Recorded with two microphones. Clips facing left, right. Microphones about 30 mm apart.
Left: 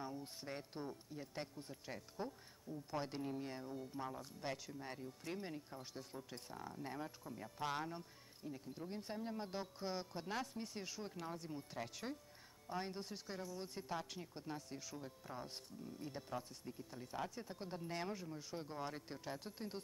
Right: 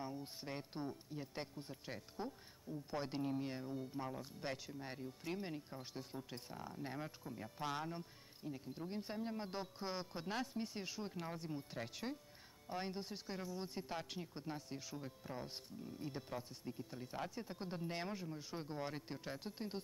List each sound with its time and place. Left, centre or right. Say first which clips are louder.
0.0 s speech: right 1 dB; centre
8.5 s speech: right 2 dB; centre